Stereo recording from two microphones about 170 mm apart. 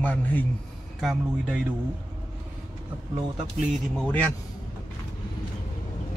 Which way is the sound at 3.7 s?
Centre (ahead or behind).